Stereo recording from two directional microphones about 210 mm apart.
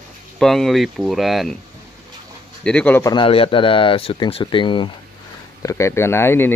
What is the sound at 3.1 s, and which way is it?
Speech, 25° left (ahead or behind).